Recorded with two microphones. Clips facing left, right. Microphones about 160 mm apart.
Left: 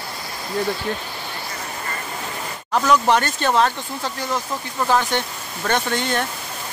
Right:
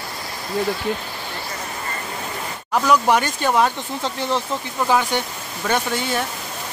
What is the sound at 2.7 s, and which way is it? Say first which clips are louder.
Speech: even; 10° right (ahead or behind).